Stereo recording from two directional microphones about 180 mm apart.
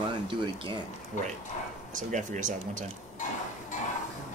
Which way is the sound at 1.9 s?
45° right (ahead or behind).